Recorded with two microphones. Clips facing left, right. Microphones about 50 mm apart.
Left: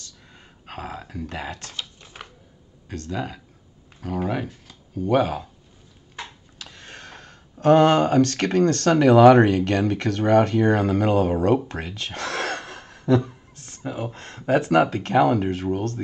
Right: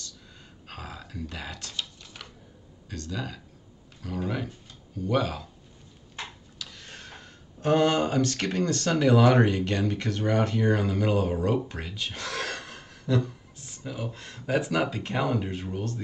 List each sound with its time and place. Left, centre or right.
0.7 s burping: left
1.3 s typing: left
2.9 s speech: left
4.9 s speech: left
6.6 s speech: left